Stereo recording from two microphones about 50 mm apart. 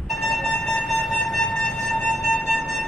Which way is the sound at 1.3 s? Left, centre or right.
Centre.